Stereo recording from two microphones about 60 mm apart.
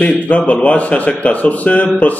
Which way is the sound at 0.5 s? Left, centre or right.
Left.